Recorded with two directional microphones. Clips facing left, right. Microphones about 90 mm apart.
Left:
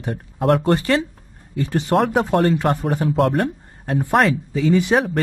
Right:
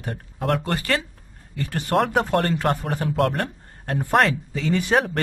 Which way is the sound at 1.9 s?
Centre (ahead or behind).